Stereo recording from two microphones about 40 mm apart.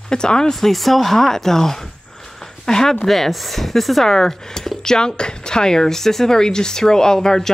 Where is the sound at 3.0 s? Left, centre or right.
Centre.